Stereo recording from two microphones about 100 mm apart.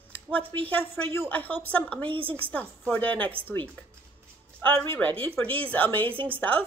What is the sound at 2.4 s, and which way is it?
Speech, 15° left (ahead or behind).